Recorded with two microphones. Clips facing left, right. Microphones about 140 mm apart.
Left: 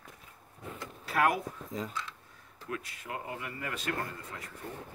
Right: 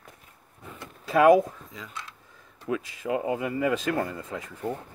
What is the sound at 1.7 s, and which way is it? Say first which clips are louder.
Speech: left 11 dB; 45° left (ahead or behind).